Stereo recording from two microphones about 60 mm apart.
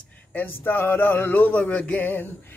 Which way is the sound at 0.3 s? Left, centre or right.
Left.